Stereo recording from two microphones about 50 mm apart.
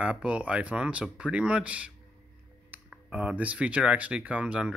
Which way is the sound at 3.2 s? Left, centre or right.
Right.